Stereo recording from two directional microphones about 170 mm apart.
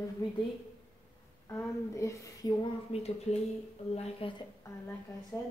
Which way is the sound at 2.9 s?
40° left (ahead or behind).